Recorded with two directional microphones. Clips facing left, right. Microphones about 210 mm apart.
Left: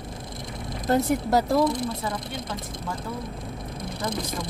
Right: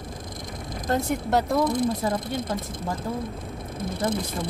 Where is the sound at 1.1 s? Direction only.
Centre (ahead or behind).